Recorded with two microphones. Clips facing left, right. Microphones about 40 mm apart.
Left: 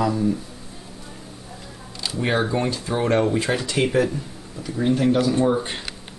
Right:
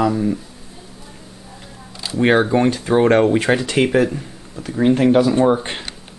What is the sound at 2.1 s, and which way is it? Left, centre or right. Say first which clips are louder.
Speech: right 8 dB; right.